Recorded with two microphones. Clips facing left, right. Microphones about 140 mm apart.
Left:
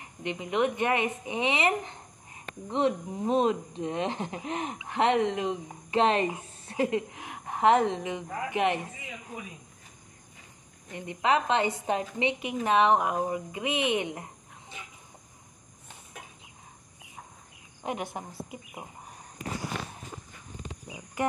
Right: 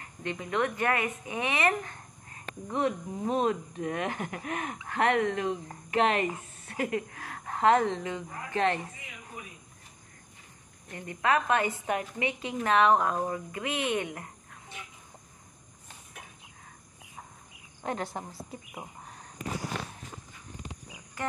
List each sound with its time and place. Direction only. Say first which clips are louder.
0.0 s a woman's voice: left 1 dB; 20° left (ahead or behind)
10.9 s a woman's voice: left 1 dB; 20° left (ahead or behind)
17.8 s a woman's voice: even; 15° left (ahead or behind)
20.6 s wild animals: left 3 dB; 15° left (ahead or behind)